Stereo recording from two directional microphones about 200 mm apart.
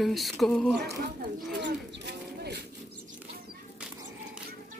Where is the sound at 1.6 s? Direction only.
60° right (ahead or behind).